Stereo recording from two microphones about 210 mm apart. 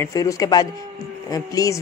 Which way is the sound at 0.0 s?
15° left (ahead or behind).